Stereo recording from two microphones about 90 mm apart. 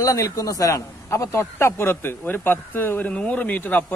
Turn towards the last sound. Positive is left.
turn(degrees=15)  # may be behind; listen again after turning